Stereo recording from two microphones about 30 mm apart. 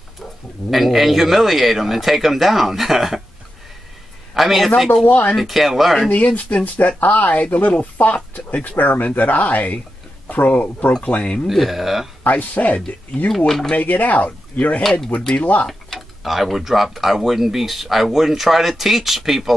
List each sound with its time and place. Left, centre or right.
0.7 s speech: centre
4.3 s a man's voice: centre
5.0 s speech: left
5.4 s speech: centre
6.0 s speech: left
11.1 s speech: left
11.4 s speech: centre
12.3 s speech: left
13.1 s speech: centre
13.7 s speech: left
14.8 s speech: centre
15.3 s speech: left
15.9 s tick-tock: centre
16.3 s speech: centre